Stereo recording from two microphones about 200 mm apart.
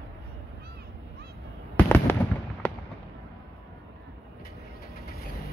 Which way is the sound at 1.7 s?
10° left (ahead or behind).